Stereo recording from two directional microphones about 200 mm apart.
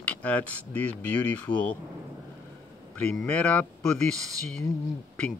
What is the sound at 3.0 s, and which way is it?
Speech, 5° left (ahead or behind).